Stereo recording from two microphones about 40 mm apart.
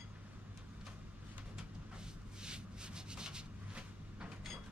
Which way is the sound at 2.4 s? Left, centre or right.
Right.